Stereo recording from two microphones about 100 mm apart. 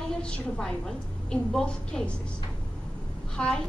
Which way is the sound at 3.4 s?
5° left (ahead or behind).